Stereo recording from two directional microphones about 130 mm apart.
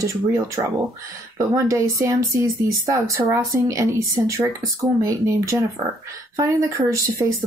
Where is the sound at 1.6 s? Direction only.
25° right (ahead or behind).